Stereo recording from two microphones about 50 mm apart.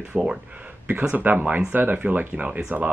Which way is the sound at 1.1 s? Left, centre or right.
Right.